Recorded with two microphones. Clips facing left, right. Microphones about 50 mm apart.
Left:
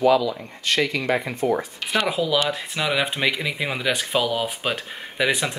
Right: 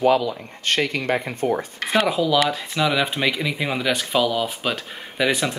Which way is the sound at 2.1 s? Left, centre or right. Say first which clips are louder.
Right 2 dB; centre.